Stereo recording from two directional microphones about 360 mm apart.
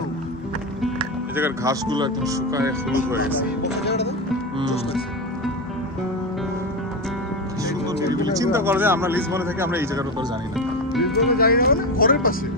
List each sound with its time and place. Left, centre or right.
0.9 s speech: centre
3.6 s speech: left
7.6 s speech: centre
11.1 s speech: left